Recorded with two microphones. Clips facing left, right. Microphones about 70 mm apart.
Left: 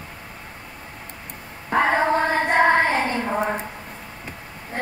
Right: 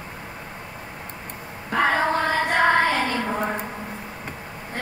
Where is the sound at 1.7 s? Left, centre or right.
Left.